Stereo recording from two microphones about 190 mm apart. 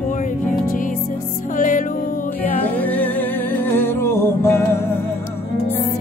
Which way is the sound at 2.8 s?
10° left (ahead or behind).